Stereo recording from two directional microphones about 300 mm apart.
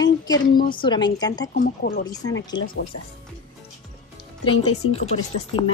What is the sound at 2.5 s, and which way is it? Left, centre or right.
Speech, centre.